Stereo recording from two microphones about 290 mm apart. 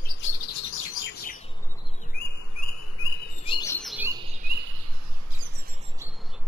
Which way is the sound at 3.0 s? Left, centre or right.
Left.